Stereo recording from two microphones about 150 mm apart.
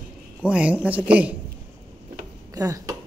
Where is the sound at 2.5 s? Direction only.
20° right (ahead or behind).